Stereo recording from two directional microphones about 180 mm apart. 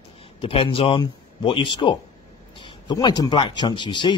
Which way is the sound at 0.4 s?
30° left (ahead or behind).